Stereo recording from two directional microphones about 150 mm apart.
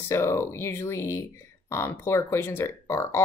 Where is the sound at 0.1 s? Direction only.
20° left (ahead or behind).